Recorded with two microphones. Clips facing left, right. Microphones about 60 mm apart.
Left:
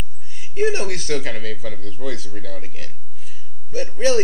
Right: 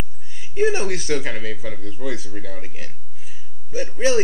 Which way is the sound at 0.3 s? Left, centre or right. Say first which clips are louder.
Right 1 dB; centre.